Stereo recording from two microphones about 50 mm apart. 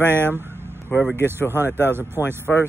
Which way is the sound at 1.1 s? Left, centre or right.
Right.